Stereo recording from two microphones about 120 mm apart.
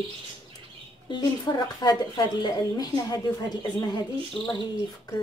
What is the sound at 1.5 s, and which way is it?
A woman's voice, 35° left (ahead or behind).